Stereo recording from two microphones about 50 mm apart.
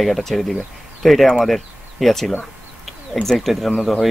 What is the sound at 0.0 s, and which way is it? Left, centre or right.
Speech, centre.